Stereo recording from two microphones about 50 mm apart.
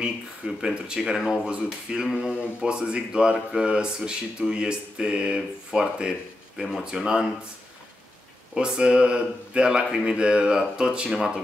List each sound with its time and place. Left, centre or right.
0.6 s speech: centre
8.5 s speech: centre
11.1 s speech: centre